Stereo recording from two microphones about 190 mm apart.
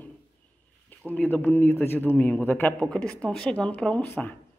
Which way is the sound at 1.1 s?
10° left (ahead or behind).